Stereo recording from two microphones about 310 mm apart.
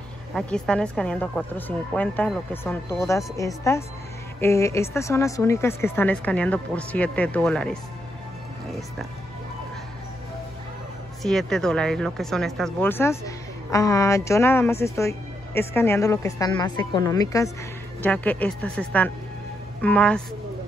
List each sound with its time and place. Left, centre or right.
0.3 s speech: centre
11.2 s speech: centre